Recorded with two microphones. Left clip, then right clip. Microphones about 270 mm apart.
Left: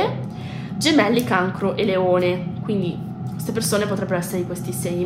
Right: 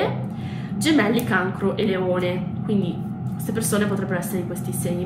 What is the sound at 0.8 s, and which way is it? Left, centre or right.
A woman's voice, left.